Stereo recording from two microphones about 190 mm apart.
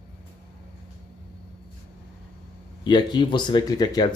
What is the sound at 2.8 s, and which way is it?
Speech, 25° left (ahead or behind).